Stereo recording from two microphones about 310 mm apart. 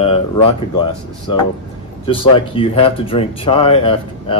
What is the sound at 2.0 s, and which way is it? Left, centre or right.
Speech, centre.